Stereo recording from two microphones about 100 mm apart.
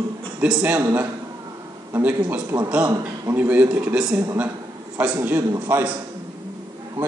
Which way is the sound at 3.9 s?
5° right (ahead or behind).